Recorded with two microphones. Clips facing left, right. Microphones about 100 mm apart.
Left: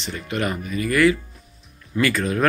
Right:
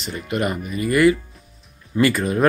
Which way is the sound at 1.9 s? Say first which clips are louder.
Right 3 dB; 25° right (ahead or behind).